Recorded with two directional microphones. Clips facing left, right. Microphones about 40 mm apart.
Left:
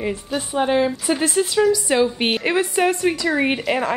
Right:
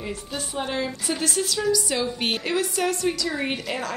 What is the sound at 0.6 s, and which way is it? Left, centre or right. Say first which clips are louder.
A woman's voice: left 10 dB; left.